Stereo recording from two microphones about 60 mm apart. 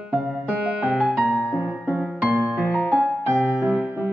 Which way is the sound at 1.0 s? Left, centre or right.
Centre.